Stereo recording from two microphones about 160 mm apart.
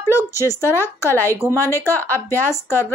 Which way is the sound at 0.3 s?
20° left (ahead or behind).